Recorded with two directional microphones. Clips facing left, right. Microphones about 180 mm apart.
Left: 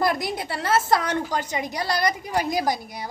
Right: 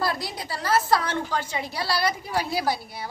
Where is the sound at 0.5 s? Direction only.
25° left (ahead or behind).